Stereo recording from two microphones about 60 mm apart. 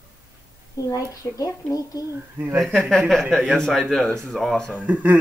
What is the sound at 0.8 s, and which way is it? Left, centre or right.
Speech, left.